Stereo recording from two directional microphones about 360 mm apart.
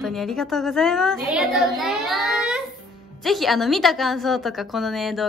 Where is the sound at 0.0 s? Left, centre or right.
Centre.